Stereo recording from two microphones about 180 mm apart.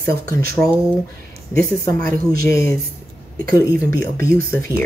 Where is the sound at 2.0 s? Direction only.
55° right (ahead or behind).